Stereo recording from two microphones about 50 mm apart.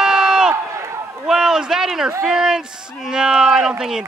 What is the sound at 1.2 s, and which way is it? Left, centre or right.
Speech, centre.